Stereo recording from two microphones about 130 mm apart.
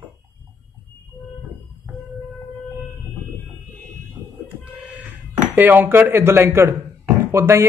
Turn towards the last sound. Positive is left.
turn(degrees=-20)  # may be behind; listen again after turning